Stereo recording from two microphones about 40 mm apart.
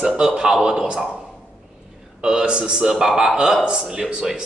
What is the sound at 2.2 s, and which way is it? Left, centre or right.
Speech, centre.